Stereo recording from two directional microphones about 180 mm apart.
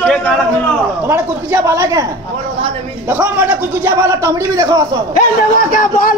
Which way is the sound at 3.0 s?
10° right (ahead or behind).